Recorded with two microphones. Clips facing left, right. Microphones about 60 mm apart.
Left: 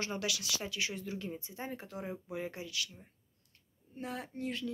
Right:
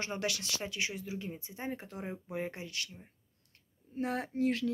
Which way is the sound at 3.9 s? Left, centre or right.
Right.